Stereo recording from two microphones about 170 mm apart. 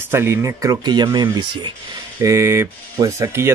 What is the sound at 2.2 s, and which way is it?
Speech, 15° right (ahead or behind).